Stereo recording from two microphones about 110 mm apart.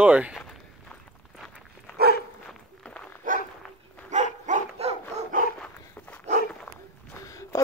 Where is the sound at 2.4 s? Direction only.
10° left (ahead or behind).